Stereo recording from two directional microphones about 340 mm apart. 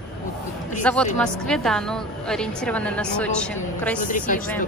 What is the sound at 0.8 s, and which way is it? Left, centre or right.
A woman's voice, centre.